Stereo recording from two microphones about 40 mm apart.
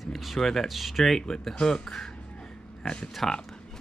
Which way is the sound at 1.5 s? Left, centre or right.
Centre.